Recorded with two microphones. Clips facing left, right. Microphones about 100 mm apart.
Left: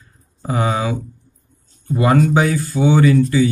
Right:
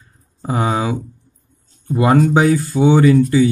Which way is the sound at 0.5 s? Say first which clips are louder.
Right 1 dB; 20° right (ahead or behind).